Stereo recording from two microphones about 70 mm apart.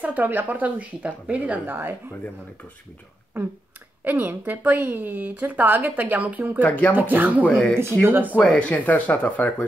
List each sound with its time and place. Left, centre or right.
0.0 s a woman's voice: right
4.0 s a woman's voice: right
6.6 s speech: left
6.9 s a woman's voice: right
7.4 s speech: centre
8.1 s a woman's voice: right
8.4 s speech: centre